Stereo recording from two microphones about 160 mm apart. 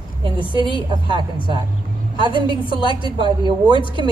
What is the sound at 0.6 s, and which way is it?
Speech, 30° left (ahead or behind).